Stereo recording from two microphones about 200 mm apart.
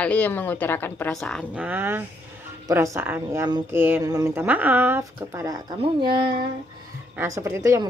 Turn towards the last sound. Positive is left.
turn(degrees=-15)  # may be behind; listen again after turning